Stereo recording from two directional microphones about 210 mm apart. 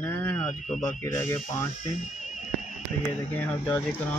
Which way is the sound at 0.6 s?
35° left (ahead or behind).